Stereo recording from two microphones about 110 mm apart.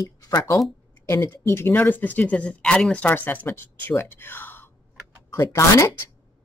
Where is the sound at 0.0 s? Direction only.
30° left (ahead or behind).